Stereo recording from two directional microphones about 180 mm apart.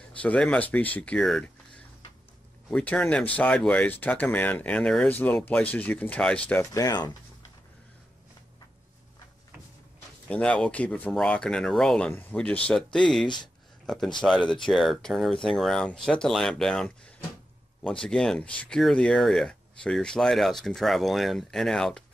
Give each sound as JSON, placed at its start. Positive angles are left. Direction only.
{"t": 0.2, "sound": "speech", "side_deg": 5}
{"t": 2.7, "sound": "speech", "side_deg": 5}
{"t": 10.3, "sound": "speech", "side_deg": 5}